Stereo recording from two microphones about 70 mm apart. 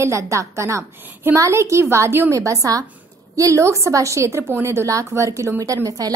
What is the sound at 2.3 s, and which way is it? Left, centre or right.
A woman's voice, right.